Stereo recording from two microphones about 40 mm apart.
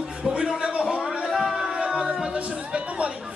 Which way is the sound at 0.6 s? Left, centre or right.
Right.